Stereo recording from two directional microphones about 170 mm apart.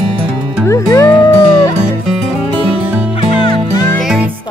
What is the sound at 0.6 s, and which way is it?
Music, 15° left (ahead or behind).